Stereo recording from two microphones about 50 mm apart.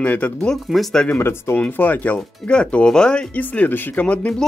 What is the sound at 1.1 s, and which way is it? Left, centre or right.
Speech, left.